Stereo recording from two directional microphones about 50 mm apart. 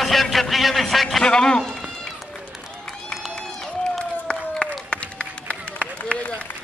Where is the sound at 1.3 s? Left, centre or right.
Centre.